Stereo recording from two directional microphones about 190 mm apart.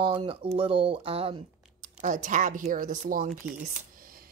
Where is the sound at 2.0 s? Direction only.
45° right (ahead or behind).